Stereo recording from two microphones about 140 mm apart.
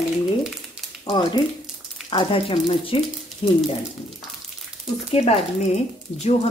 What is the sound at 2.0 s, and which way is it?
Speech, 40° left (ahead or behind).